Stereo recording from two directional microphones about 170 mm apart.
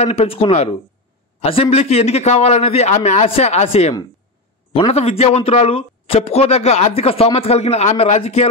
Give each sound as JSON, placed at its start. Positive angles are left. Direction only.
{"t": 0.0, "sound": "a man's voice", "side_deg": 40}